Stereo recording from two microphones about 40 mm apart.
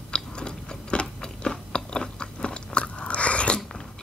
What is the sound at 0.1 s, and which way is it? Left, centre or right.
Chewing, left.